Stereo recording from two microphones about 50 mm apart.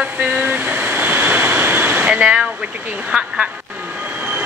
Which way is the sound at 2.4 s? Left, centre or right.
Centre.